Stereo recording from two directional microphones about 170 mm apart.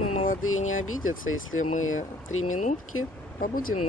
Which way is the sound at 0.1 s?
50° left (ahead or behind).